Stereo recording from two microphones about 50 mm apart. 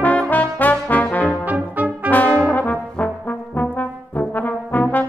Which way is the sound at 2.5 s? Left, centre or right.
Left.